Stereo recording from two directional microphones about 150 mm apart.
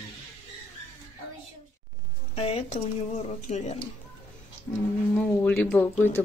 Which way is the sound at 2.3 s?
40° left (ahead or behind).